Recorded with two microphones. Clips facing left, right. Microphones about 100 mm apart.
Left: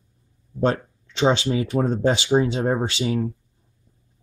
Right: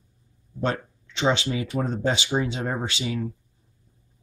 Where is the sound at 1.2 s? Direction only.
30° left (ahead or behind).